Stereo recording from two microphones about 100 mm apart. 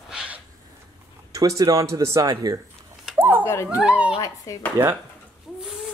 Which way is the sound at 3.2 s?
20° right (ahead or behind).